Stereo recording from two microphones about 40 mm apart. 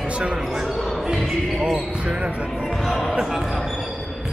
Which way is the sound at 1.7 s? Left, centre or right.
Right.